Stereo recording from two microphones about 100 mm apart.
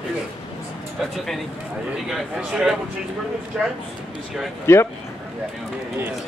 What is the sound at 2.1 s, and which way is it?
Speech, 5° right (ahead or behind).